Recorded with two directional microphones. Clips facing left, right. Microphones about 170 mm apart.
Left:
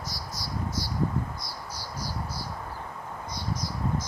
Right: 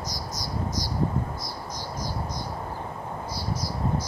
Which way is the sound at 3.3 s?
5° right (ahead or behind).